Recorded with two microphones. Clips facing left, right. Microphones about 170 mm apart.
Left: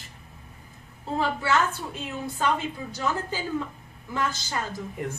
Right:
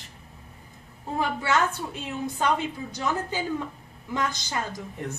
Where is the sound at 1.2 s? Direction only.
15° right (ahead or behind).